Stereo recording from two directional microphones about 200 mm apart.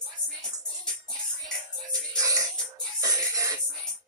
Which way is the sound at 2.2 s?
15° right (ahead or behind).